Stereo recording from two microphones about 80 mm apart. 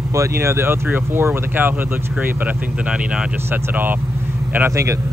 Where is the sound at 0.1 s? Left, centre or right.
Right.